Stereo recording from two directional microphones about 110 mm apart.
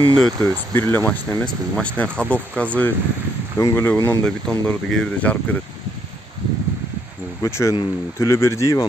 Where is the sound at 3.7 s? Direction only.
30° left (ahead or behind).